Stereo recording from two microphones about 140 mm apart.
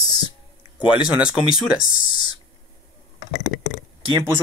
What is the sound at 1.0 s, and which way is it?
Speech, 5° right (ahead or behind).